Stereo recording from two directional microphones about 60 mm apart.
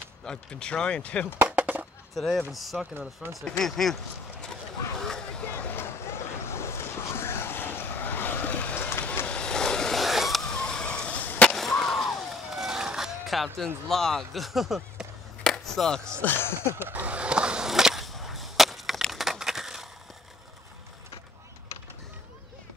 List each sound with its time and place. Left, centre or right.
0.2 s speech: centre
1.5 s chop: right
2.1 s speech: centre
5.0 s vehicle: centre
5.4 s vehicle: left
6.0 s vehicle: left
9.3 s vehicle: centre
11.5 s a sound: centre
13.8 s speech: centre
15.4 s chop: centre
16.2 s speech: left
16.9 s whip: right; by 19.2 s centre
19.2 s crushing: centre